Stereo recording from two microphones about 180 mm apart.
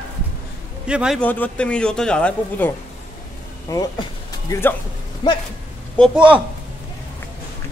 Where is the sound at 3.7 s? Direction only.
15° left (ahead or behind).